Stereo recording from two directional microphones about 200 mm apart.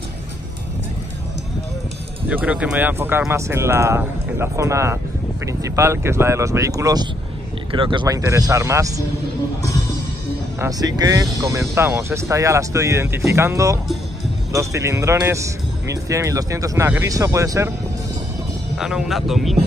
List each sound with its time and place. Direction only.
2.2 s speech: 5° right (ahead or behind)
10.6 s speech: 20° right (ahead or behind)
18.8 s speech: centre (ahead or behind)